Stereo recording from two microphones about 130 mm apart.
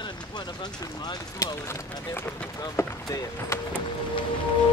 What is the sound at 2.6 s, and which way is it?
Speech, 25° left (ahead or behind).